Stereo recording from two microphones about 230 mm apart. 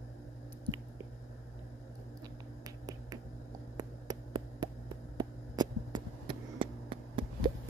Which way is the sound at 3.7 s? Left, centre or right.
Centre.